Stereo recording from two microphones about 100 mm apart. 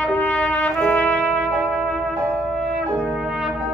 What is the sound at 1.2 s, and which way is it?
Music, centre (ahead or behind).